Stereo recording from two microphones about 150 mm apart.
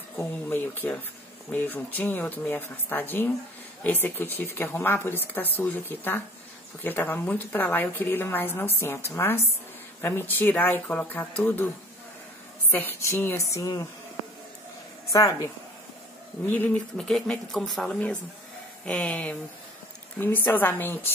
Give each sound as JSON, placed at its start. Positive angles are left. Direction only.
{"t": 0.2, "sound": "a woman's voice", "side_deg": 15}
{"t": 12.7, "sound": "speech", "side_deg": 15}
{"t": 15.1, "sound": "speech", "side_deg": 20}
{"t": 16.4, "sound": "a woman's voice", "side_deg": 10}